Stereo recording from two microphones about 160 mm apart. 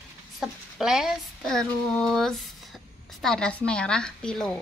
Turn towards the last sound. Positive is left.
turn(degrees=5)  # may be behind; listen again after turning